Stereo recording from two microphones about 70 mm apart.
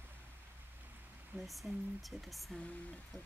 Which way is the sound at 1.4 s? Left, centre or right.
Centre.